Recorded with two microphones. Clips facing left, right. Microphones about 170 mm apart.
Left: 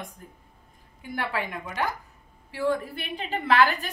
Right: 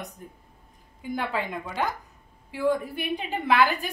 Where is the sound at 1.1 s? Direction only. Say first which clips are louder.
Right 1 dB; 20° right (ahead or behind).